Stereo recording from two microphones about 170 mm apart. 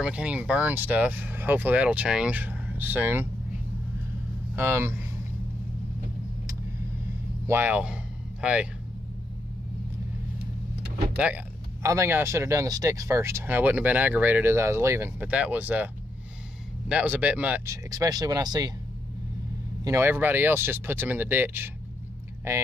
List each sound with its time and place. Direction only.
0.0 s speech: 5° right (ahead or behind)
4.6 s speech: 15° right (ahead or behind)
7.4 s a sound: 10° right (ahead or behind)
11.1 s speech: 10° right (ahead or behind)
16.9 s speech: 10° right (ahead or behind)
17.8 s speech: 20° right (ahead or behind)
19.8 s speech: 15° right (ahead or behind)